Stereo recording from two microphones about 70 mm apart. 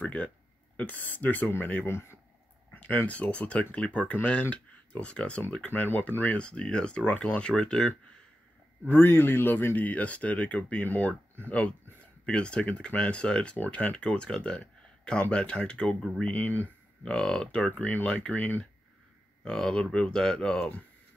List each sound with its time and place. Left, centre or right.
0.0 s speech: centre; by 2.1 s left
2.7 s speech: left
5.7 s speech: left; by 7.9 s centre
8.8 s speech: left; by 16.3 s centre
16.3 s speech: left
17.0 s speech: centre
17.6 s speech: left
19.4 s speech: centre